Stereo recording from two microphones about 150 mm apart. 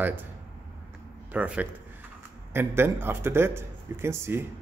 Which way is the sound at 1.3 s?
10° right (ahead or behind).